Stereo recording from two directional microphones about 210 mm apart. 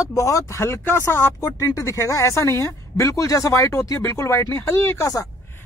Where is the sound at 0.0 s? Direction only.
15° left (ahead or behind).